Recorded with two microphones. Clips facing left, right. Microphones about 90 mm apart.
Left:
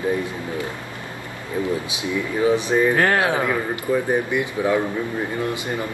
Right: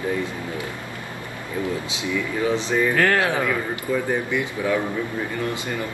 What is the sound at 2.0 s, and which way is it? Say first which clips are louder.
Speech: left 3 dB; 20° left (ahead or behind).